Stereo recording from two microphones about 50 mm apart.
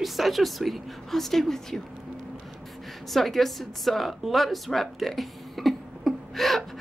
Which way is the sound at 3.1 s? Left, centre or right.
Centre.